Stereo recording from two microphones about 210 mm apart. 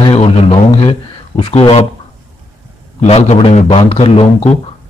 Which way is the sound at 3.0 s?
30° left (ahead or behind).